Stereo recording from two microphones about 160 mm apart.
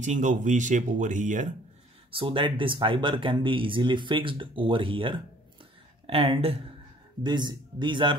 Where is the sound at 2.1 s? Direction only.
35° right (ahead or behind).